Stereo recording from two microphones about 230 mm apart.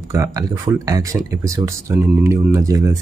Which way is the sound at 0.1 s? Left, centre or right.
Centre.